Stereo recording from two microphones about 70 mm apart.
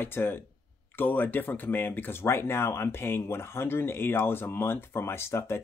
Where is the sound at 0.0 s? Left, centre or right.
Left.